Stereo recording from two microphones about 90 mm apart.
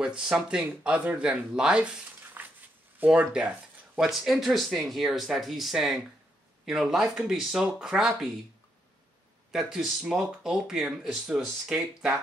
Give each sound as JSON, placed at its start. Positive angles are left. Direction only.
{"t": 0.0, "sound": "speech", "side_deg": -5}
{"t": 2.4, "sound": "a sound", "side_deg": -20}
{"t": 3.0, "sound": "speech", "side_deg": -15}
{"t": 9.5, "sound": "speech", "side_deg": -5}